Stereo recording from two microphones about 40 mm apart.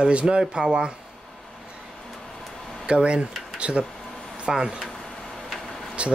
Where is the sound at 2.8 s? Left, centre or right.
Right.